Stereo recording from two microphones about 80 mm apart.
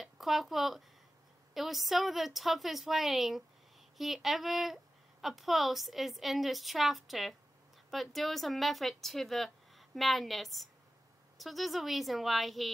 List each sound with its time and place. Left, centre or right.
0.0 s speech: centre